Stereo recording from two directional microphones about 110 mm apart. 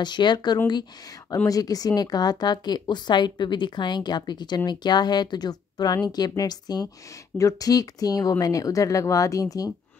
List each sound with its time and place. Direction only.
0.0 s speech: 45° left (ahead or behind)